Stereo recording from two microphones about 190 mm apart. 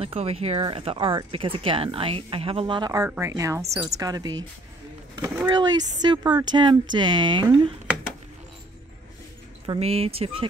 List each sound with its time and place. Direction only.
0.0 s speech: 30° right (ahead or behind)
9.7 s speech: 30° right (ahead or behind)